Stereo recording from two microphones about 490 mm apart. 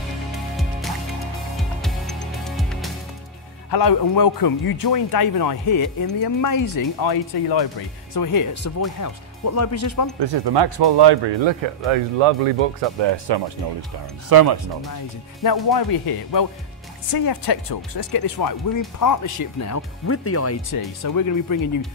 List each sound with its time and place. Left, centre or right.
0.6 s music: centre
3.7 s speech: left
10.1 s speech: right
13.0 s speech: right
14.3 s speech: right
15.4 s speech: left
20.7 s speech: left